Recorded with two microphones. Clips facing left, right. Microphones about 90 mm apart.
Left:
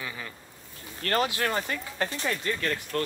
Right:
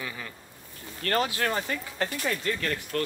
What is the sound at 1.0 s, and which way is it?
Speech, 20° left (ahead or behind).